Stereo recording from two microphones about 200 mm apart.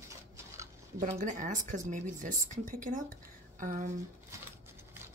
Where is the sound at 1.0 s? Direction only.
40° right (ahead or behind).